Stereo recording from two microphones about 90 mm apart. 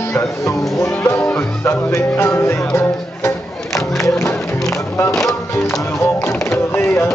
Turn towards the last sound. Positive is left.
turn(degrees=25)  # may be behind; listen again after turning